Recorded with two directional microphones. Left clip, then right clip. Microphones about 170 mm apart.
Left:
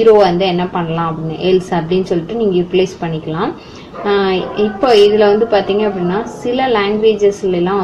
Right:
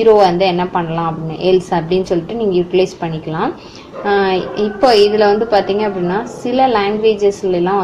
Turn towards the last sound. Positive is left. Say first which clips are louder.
# even
turn(degrees=-20)  # may be behind; listen again after turning